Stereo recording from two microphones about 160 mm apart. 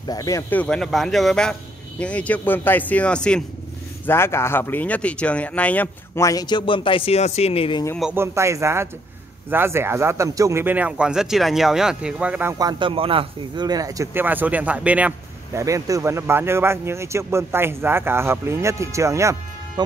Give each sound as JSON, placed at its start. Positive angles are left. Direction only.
{"t": 0.0, "sound": "speech", "side_deg": 25}
{"t": 8.0, "sound": "speech", "side_deg": -15}
{"t": 12.5, "sound": "speech", "side_deg": -25}
{"t": 15.6, "sound": "speech", "side_deg": -20}